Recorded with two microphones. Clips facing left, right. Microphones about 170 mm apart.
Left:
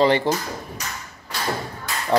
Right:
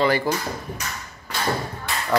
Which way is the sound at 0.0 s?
25° left (ahead or behind).